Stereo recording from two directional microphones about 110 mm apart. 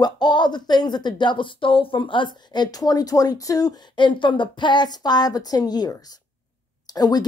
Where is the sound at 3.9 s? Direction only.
50° left (ahead or behind).